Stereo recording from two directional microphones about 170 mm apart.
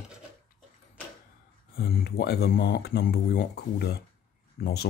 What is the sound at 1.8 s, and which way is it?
Speech, 70° left (ahead or behind).